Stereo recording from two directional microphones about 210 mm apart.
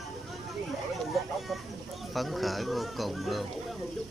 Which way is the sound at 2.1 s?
Centre (ahead or behind).